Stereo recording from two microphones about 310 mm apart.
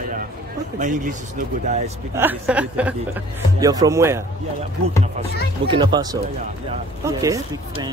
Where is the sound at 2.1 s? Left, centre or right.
Centre.